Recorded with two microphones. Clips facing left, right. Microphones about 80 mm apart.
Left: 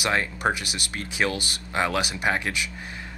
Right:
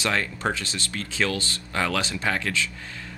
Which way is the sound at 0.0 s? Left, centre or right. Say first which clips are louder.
Left 1 dB; centre.